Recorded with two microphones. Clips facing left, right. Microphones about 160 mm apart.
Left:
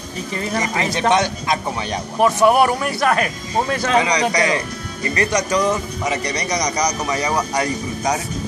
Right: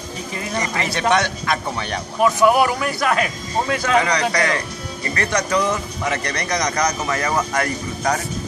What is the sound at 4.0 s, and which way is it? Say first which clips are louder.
Speech: left 1 dB; 15° left (ahead or behind).